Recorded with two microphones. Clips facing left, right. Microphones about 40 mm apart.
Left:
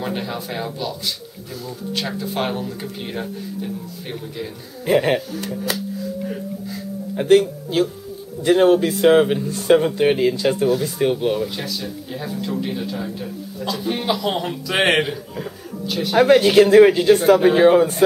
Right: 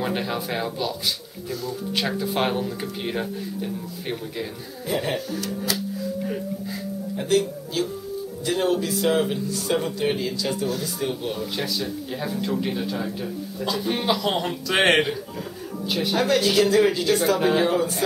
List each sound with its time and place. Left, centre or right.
0.0 s a man's voice: centre
4.8 s speech: left
6.2 s music: centre
7.2 s speech: left
11.4 s a man's voice: centre
15.8 s speech: centre
16.2 s speech: left